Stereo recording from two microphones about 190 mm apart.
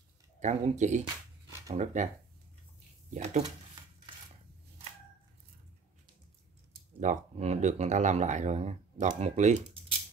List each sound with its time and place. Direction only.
0.4 s speech: 40° right (ahead or behind)
3.1 s speech: 35° right (ahead or behind)
7.0 s speech: 35° right (ahead or behind)